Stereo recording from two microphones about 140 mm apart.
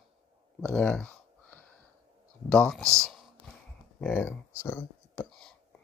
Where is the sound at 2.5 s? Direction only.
5° left (ahead or behind).